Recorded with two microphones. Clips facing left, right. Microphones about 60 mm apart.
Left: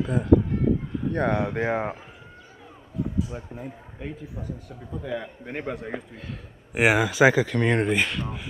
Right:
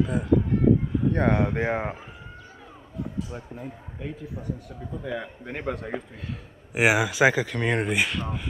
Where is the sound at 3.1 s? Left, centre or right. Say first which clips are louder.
Left 3 dB; centre.